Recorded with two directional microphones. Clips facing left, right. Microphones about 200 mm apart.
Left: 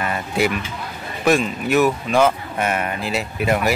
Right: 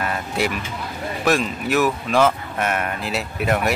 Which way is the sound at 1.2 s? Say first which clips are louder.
Left 3 dB; centre (ahead or behind).